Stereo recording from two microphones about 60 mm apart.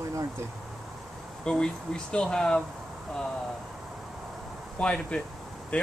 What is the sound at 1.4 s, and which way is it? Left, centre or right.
Speech, centre.